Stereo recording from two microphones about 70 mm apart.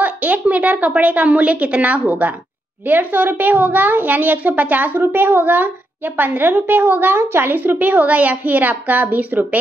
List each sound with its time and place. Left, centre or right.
0.0 s a woman's voice: right